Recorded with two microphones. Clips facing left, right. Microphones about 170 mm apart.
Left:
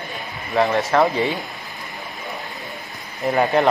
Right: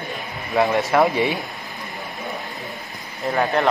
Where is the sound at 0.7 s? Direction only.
20° right (ahead or behind).